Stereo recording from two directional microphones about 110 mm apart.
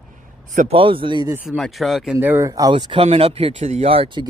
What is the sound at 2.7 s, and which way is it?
Speech, 50° right (ahead or behind).